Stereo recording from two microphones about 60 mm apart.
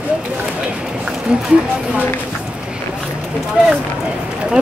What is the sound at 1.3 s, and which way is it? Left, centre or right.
Speech, centre.